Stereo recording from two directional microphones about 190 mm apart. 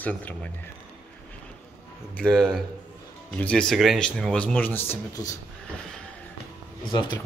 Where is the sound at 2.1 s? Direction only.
5° left (ahead or behind).